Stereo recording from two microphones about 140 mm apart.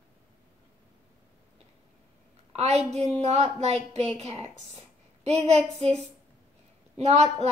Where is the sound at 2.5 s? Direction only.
50° right (ahead or behind).